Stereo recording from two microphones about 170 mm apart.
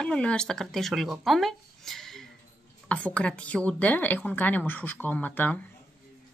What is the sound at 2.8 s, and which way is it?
A woman's voice, 5° left (ahead or behind).